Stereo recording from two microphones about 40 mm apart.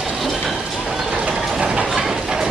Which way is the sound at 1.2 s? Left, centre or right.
Right.